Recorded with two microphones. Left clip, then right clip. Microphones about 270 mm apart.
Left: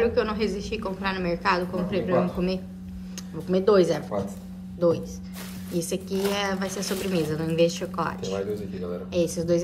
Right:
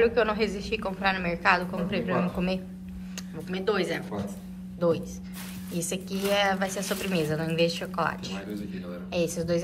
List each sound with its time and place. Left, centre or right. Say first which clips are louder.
0.0 s a woman's voice: even; centre
3.4 s a woman's voice: left 8 dB; centre
4.7 s a woman's voice: left 3 dB; centre